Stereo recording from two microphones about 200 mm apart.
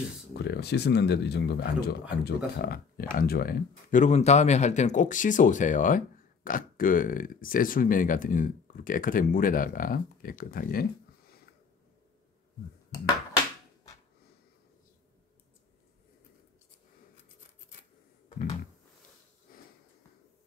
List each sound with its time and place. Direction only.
0.3 s speech: 55° left (ahead or behind)